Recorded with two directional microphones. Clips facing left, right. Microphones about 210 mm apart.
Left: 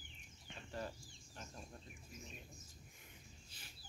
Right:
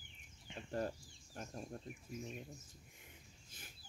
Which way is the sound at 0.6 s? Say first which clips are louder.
Right 6 dB; 45° right (ahead or behind).